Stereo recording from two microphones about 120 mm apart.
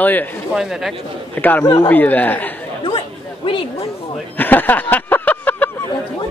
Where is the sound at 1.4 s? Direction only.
15° left (ahead or behind).